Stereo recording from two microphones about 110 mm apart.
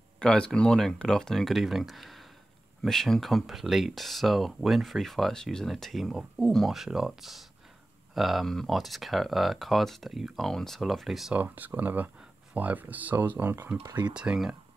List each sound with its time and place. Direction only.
0.2 s speech: 5° left (ahead or behind)
11.3 s speech: 15° right (ahead or behind)
13.8 s speech: 40° right (ahead or behind)
14.1 s speech: 10° right (ahead or behind)